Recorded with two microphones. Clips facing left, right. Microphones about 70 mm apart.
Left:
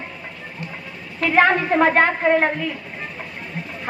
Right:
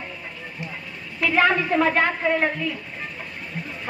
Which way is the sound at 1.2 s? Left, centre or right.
Left.